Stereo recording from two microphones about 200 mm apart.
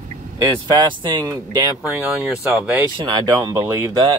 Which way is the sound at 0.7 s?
20° right (ahead or behind).